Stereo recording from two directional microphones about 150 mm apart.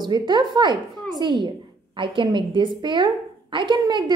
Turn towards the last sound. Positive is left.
turn(degrees=-30)  # may be behind; listen again after turning